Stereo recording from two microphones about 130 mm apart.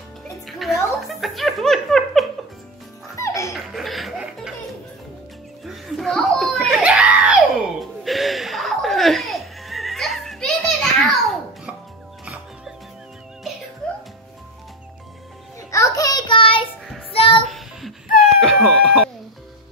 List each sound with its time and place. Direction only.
0.5 s music: centre (ahead or behind)
1.0 s laughter: centre (ahead or behind)
3.2 s music: 25° left (ahead or behind)
3.5 s music: centre (ahead or behind)
5.7 s laughter: centre (ahead or behind)
6.8 s screaming: 10° right (ahead or behind)
8.0 s laughter: centre (ahead or behind)
13.8 s music: 5° left (ahead or behind)
15.7 s child singing: 25° left (ahead or behind); by 16.6 s 40° left (ahead or behind)
17.1 s music: 45° left (ahead or behind)
17.5 s child singing: centre (ahead or behind)
18.4 s a sound: 5° left (ahead or behind)